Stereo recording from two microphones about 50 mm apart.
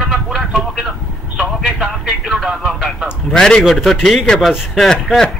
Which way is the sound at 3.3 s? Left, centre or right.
Centre.